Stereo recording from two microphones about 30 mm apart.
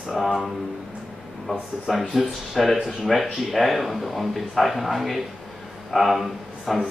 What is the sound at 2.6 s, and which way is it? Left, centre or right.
Speech, centre.